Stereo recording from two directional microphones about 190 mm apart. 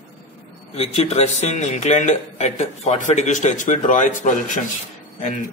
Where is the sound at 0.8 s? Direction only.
35° left (ahead or behind).